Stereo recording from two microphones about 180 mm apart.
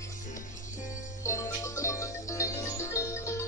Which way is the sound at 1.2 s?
15° left (ahead or behind).